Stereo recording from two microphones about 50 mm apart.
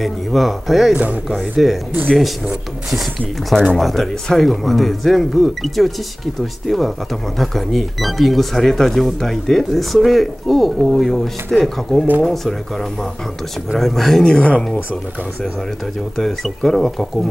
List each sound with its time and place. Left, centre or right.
0.0 s speech: centre
0.9 s speech: right
1.4 s speech: centre
2.9 s speech: centre
14.2 s speech: left
16.2 s speech: centre